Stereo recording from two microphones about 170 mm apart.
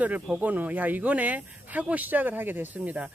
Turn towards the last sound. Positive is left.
turn(degrees=-10)  # may be behind; listen again after turning